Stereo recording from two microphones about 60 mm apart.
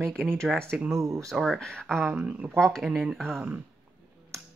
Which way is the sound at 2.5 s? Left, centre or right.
Centre.